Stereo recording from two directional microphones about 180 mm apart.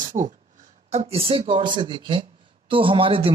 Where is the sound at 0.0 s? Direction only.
45° right (ahead or behind).